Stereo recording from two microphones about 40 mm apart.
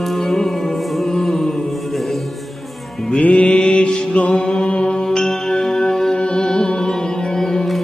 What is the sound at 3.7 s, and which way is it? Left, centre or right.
Mantra, left.